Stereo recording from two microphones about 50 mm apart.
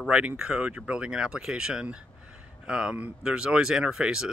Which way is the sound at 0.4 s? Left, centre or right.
Right.